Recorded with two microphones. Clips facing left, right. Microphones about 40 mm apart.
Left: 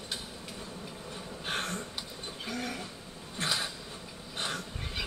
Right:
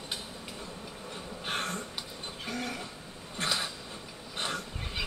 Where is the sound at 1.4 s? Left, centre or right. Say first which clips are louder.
Right 1 dB; right.